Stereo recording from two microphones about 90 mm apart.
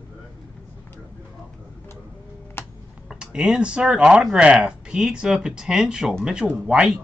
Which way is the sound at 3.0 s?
5° right (ahead or behind).